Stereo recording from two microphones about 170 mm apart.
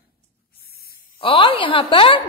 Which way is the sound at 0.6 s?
65° left (ahead or behind).